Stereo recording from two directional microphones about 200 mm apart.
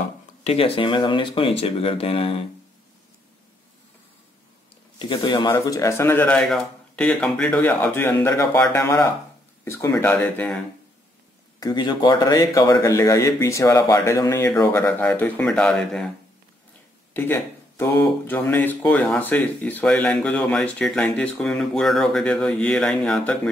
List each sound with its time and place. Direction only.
0.4 s speech: 30° left (ahead or behind)
4.9 s speech: 25° left (ahead or behind); by 10.6 s 5° left (ahead or behind)
11.6 s speech: 20° left (ahead or behind); by 16.1 s centre (ahead or behind)
17.1 s speech: 10° left (ahead or behind)